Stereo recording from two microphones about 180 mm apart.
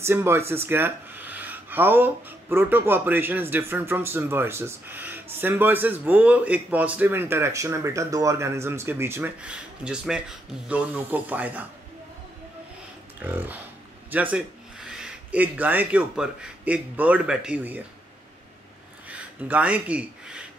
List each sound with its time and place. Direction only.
0.0 s speech: 15° right (ahead or behind)
13.2 s speech: 10° right (ahead or behind)
19.0 s speech: 5° right (ahead or behind)